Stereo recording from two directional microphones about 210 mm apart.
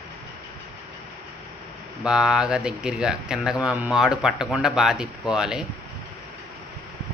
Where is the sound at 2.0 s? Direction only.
5° right (ahead or behind).